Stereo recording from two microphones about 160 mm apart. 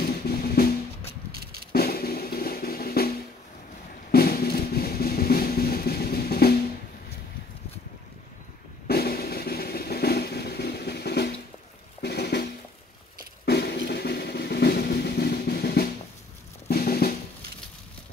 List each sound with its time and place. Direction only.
0.0 s drum: 70° left (ahead or behind)
1.3 s drum: 75° right (ahead or behind)
1.7 s drum: 70° left (ahead or behind)
4.1 s music: 70° left (ahead or behind)
8.8 s drum: 70° left (ahead or behind)
13.5 s drum: 75° left (ahead or behind)